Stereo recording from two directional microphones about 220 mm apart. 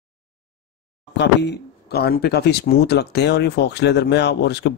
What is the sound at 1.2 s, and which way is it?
Speech, 50° left (ahead or behind).